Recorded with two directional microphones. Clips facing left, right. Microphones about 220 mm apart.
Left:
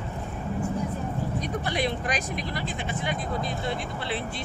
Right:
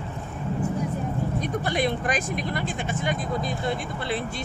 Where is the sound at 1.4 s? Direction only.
50° right (ahead or behind).